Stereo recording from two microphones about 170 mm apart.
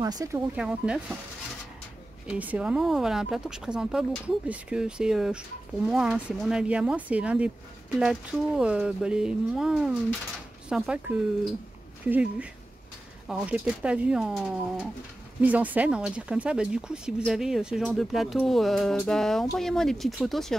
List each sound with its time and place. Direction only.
0.0 s speech: 20° right (ahead or behind)
0.6 s speech: 5° right (ahead or behind)
2.2 s speech: 10° right (ahead or behind)